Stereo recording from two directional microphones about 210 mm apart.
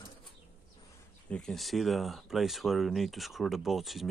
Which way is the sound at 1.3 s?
Centre (ahead or behind).